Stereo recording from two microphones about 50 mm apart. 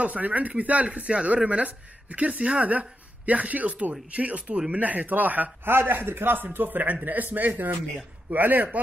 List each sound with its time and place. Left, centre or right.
0.0 s speech: right
4.7 s a man's voice: right
5.7 s a man's voice: right